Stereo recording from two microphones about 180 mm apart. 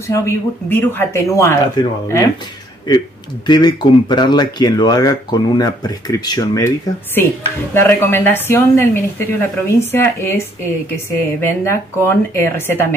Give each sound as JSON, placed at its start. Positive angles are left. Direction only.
{"t": 0.1, "sound": "speech", "side_deg": 15}
{"t": 7.7, "sound": "speech", "side_deg": 10}